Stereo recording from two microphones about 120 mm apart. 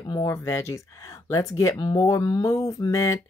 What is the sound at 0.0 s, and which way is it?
Speech, 35° left (ahead or behind).